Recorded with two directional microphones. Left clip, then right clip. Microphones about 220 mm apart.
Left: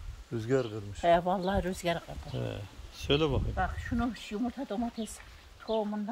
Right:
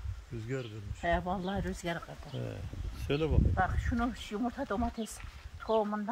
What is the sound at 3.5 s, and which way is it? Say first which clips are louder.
Speech: right 1 dB; 15° left (ahead or behind).